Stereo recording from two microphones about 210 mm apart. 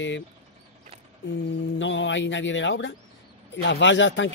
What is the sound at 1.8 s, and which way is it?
Speech, 60° left (ahead or behind).